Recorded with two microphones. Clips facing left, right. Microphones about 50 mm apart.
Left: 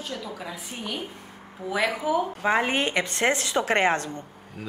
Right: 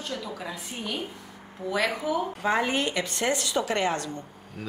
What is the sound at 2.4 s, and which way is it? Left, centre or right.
A woman's voice, left.